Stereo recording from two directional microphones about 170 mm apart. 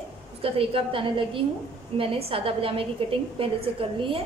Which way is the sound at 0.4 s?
35° right (ahead or behind).